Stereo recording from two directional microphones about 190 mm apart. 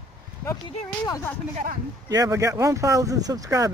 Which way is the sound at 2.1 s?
15° right (ahead or behind).